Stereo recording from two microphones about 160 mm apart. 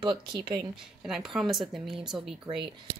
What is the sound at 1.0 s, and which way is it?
A woman's voice, 5° right (ahead or behind).